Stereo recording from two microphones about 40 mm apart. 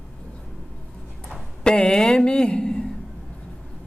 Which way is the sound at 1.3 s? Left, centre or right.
Left.